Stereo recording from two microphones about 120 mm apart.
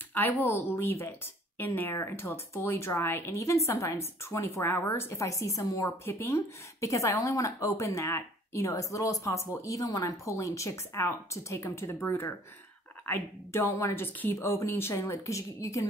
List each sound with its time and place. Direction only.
0.1 s speech: 15° left (ahead or behind)